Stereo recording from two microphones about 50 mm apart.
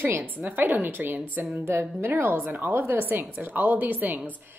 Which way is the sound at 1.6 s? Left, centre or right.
Right.